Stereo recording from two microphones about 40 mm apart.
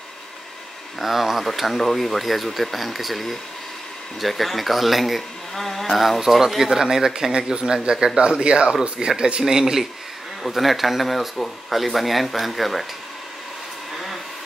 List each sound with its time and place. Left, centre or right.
1.0 s a man's voice: centre
10.4 s speech: centre
13.9 s a sound: centre